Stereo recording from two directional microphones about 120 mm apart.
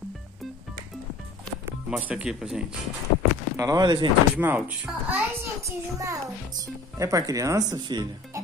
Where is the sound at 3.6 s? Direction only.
30° right (ahead or behind).